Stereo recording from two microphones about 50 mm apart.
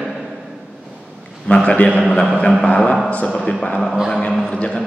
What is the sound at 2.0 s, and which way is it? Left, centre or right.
A man's voice, centre.